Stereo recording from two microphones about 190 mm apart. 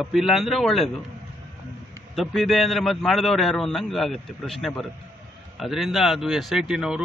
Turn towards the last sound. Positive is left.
turn(degrees=-5)  # may be behind; listen again after turning